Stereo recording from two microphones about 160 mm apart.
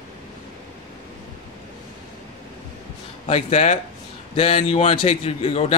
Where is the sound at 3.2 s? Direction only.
40° left (ahead or behind).